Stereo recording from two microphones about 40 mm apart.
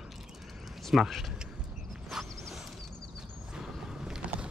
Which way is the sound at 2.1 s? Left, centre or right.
Centre.